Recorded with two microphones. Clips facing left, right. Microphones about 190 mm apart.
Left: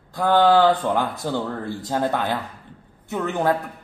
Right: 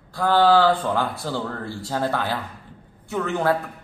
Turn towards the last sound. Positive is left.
turn(degrees=15)  # may be behind; listen again after turning